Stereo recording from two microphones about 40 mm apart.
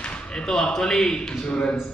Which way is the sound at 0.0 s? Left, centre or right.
Left.